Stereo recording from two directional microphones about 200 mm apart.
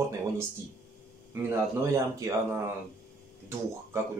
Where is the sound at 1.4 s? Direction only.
15° right (ahead or behind).